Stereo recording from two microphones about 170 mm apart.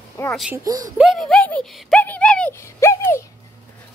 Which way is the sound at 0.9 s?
Centre (ahead or behind).